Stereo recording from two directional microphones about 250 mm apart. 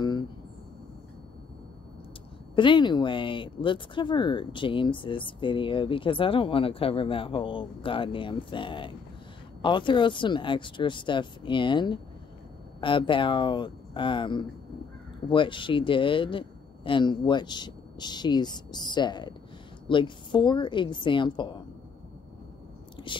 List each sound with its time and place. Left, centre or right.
2.5 s speech: centre
23.0 s chewing: centre